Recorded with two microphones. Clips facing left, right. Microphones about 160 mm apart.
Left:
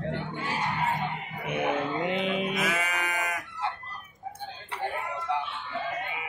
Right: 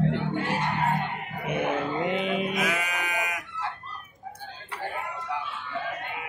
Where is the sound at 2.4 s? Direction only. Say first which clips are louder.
Right 1 dB; centre (ahead or behind).